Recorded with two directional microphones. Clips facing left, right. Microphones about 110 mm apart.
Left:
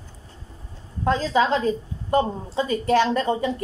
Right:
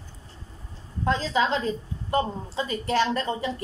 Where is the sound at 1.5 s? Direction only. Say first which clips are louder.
Left 5 dB; 25° left (ahead or behind).